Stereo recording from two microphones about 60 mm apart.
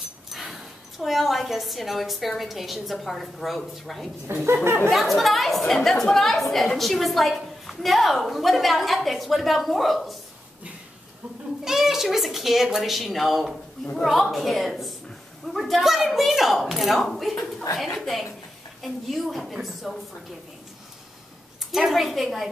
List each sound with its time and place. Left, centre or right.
0.3 s a woman's voice: centre
4.3 s a sound: right
4.6 s speech: right
4.9 s a woman's voice: centre
11.6 s a woman's voice: centre
21.7 s a woman's voice: centre